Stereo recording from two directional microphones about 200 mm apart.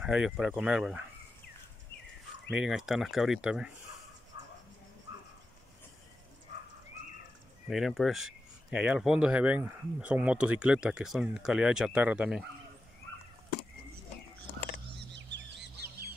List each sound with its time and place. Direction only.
0.0 s speech: 5° right (ahead or behind)
2.5 s speech: 5° right (ahead or behind)
4.3 s a sound: 20° right (ahead or behind)
7.6 s speech: centre (ahead or behind)
15.0 s chicken: 60° right (ahead or behind)